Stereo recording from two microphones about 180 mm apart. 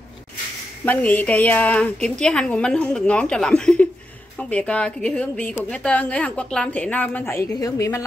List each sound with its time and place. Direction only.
0.8 s a woman's voice: 10° left (ahead or behind)